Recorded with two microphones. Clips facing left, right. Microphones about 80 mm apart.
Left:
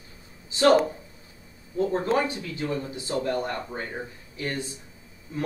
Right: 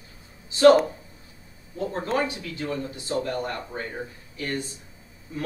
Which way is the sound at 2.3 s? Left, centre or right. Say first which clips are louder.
Left 1 dB; left.